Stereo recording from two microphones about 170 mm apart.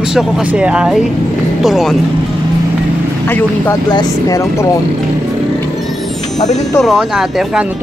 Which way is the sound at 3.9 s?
20° left (ahead or behind).